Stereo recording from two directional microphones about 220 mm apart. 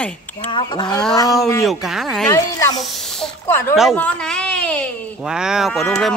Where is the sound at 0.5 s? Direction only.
20° left (ahead or behind).